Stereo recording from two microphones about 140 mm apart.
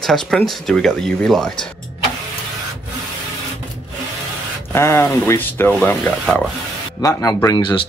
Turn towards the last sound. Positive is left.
turn(degrees=35)  # may be behind; listen again after turning